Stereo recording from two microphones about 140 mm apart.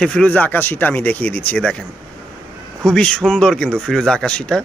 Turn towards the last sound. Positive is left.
turn(degrees=5)  # may be behind; listen again after turning